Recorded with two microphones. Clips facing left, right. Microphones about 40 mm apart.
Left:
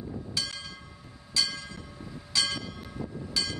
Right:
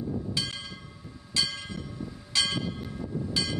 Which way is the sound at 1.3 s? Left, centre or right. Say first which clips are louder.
Even; centre.